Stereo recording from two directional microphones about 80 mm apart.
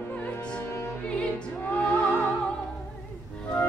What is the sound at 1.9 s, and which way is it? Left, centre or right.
Opera, left.